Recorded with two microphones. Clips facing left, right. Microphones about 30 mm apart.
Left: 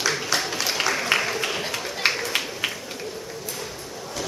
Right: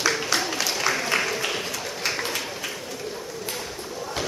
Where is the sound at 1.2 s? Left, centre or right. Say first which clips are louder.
Even; centre.